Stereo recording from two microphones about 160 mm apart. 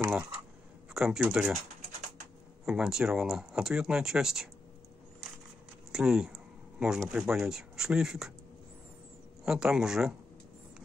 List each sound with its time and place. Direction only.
0.0 s a sound: 20° right (ahead or behind)
0.9 s speech: 5° right (ahead or behind)
2.6 s speech: 5° right (ahead or behind)
5.9 s speech: 5° right (ahead or behind)
9.4 s speech: 5° right (ahead or behind)